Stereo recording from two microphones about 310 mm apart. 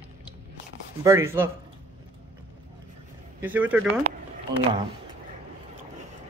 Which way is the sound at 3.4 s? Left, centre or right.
Centre.